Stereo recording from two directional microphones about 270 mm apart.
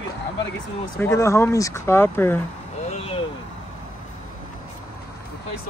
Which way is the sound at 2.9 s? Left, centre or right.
Left.